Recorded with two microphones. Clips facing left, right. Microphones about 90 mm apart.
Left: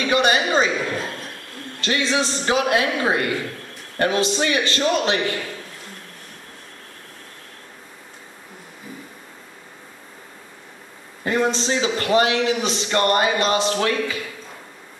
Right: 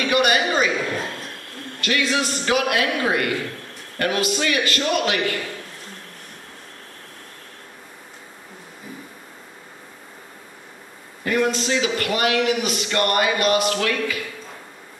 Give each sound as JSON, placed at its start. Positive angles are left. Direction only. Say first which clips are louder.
{"t": 0.0, "sound": "a sound", "louder": "even", "side_deg": 30}
{"t": 1.8, "sound": "a man's voice", "louder": "left 1 dB", "side_deg": 30}
{"t": 11.2, "sound": "a man's voice", "louder": "even", "side_deg": 25}